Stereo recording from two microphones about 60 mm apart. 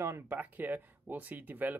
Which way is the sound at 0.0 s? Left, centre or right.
Right.